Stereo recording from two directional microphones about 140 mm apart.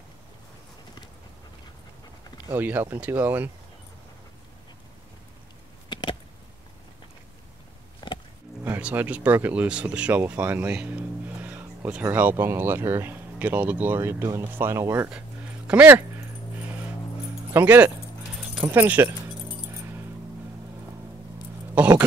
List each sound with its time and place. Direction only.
2.4 s speech: 15° right (ahead or behind)
5.9 s a sound: 35° left (ahead or behind)
8.0 s wild animals: 30° left (ahead or behind)
8.6 s speech: 15° right (ahead or behind)
15.0 s a sound: 5° right (ahead or behind)
16.5 s music: 15° right (ahead or behind)
17.5 s speech: 15° right (ahead or behind)